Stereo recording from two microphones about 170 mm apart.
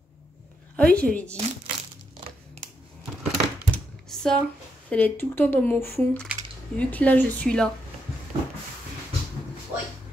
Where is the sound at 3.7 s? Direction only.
5° left (ahead or behind).